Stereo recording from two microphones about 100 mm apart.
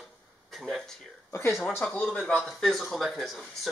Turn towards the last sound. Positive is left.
turn(degrees=0)  # may be behind; listen again after turning